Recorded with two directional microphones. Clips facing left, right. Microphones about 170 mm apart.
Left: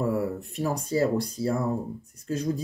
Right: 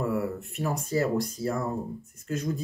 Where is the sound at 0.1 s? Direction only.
35° left (ahead or behind).